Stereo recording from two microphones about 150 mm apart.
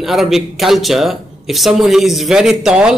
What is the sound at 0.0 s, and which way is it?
A man's voice, centre (ahead or behind).